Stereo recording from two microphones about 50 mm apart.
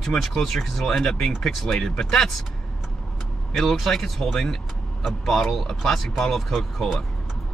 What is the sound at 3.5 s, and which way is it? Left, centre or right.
Speech, centre.